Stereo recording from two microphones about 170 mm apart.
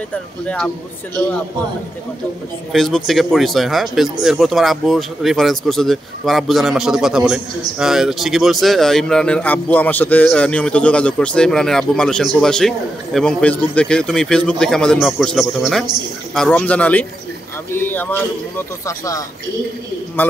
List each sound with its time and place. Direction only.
2.7 s speech: centre (ahead or behind); by 19.2 s 20° left (ahead or behind)